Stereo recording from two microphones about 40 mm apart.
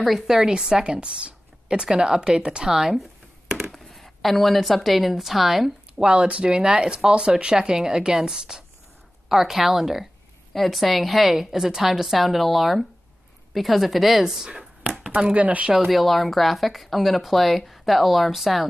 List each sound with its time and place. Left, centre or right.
0.0 s speech: centre
0.4 s speech: centre
5.9 s speech: right; by 14.2 s centre
14.2 s speech: centre
15.3 s speech: right
15.8 s speech: centre